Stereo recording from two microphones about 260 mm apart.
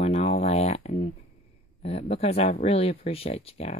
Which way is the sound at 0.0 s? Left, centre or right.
Left.